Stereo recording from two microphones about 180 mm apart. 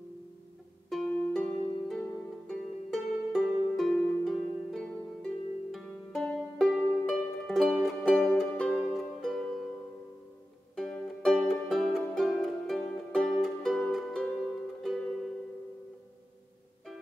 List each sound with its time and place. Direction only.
0.8 s harp: centre (ahead or behind)
10.8 s music: centre (ahead or behind)